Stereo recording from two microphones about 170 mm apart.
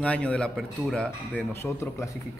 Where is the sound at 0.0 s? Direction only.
5° left (ahead or behind).